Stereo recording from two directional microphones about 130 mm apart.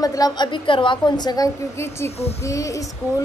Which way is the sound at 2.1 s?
55° left (ahead or behind).